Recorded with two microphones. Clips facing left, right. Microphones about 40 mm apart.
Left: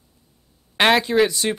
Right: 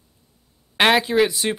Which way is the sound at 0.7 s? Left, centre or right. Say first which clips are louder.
Even; centre.